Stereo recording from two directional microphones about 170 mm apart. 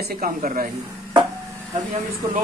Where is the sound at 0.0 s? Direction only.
60° right (ahead or behind).